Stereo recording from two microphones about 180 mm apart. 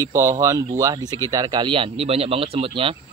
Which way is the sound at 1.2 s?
20° right (ahead or behind).